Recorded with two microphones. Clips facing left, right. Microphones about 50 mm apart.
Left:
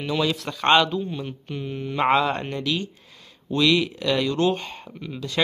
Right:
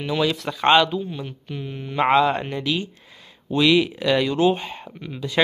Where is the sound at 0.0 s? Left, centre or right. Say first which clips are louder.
Right 2 dB; centre.